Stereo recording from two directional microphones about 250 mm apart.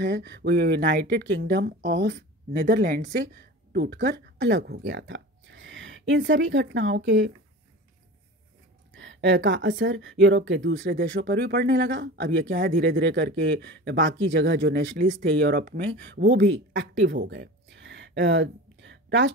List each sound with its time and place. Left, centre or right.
0.0 s speech: right
8.9 s a woman's voice: right